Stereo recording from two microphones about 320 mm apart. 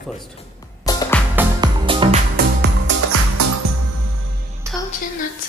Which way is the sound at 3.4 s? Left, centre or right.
Right.